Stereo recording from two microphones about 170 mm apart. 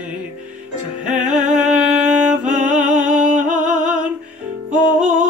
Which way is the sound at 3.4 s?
50° right (ahead or behind).